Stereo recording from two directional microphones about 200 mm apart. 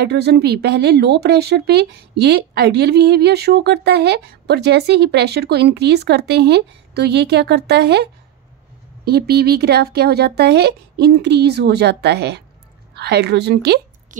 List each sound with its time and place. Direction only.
0.1 s speech: 55° right (ahead or behind)